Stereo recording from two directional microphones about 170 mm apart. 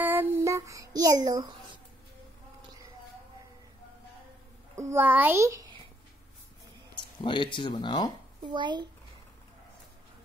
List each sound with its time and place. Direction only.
0.0 s child singing: 10° right (ahead or behind)
4.7 s a child's voice: 15° right (ahead or behind)
7.0 s speech: 30° left (ahead or behind)
8.4 s a child's voice: 25° right (ahead or behind)